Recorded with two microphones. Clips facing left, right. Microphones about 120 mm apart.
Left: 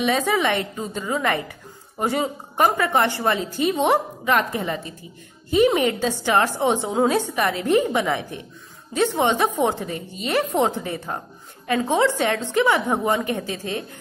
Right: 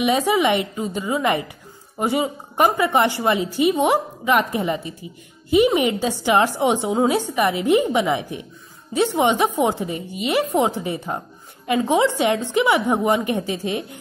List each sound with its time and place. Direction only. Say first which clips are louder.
0.0 s a woman's voice: right 3 dB; 15° right (ahead or behind)